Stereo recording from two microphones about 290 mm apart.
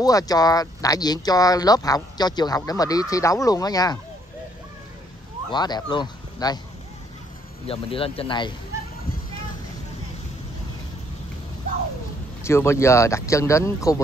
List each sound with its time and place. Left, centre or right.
0.0 s speech: centre
5.5 s speech: centre
7.6 s speech: centre
12.4 s speech: centre